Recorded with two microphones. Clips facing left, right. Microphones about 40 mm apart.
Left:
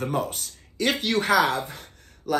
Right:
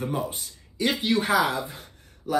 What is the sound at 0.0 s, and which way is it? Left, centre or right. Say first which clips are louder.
Speech: left 2 dB; left.